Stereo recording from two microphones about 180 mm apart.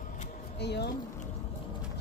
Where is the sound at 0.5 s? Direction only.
70° left (ahead or behind).